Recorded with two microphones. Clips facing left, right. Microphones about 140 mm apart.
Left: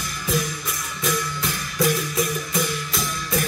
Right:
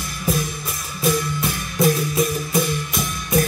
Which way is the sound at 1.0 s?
25° right (ahead or behind).